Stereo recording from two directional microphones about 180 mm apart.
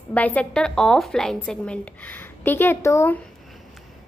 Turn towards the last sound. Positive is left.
turn(degrees=15)  # may be behind; listen again after turning